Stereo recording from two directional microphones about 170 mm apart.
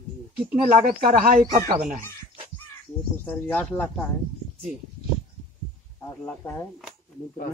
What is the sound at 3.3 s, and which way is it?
Speech, 10° left (ahead or behind).